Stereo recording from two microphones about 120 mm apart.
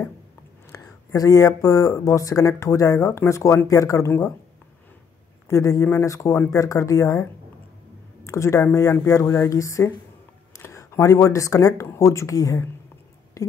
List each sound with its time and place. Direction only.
0.7 s speech: 30° left (ahead or behind)
5.5 s speech: 25° left (ahead or behind)
8.3 s speech: 25° left (ahead or behind)
13.4 s a sound: 30° left (ahead or behind)